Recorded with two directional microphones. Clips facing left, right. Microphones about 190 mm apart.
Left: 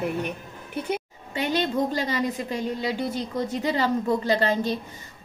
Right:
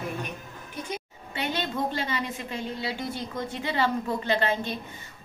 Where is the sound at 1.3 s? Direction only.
40° left (ahead or behind).